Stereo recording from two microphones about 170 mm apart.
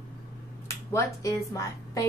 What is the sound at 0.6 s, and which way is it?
Speech, 15° left (ahead or behind).